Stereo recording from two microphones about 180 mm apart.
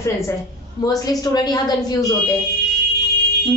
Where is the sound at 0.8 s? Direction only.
20° left (ahead or behind).